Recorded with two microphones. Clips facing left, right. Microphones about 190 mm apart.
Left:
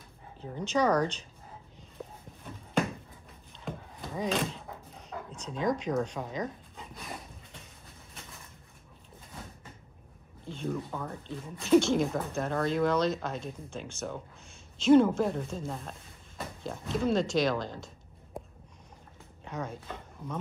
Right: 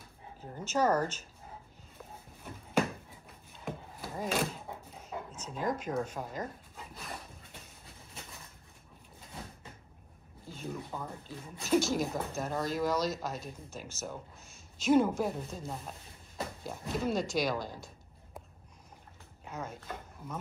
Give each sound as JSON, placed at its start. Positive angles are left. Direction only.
{"t": 0.4, "sound": "speech", "side_deg": -5}
{"t": 3.5, "sound": "a sound", "side_deg": -5}
{"t": 5.3, "sound": "speech", "side_deg": -5}
{"t": 10.4, "sound": "speech", "side_deg": -5}
{"t": 17.7, "sound": "a sound", "side_deg": 25}
{"t": 19.4, "sound": "speech", "side_deg": -5}